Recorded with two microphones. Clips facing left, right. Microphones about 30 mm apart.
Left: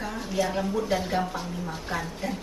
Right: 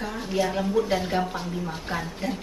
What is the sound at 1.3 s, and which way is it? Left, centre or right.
Speech, right.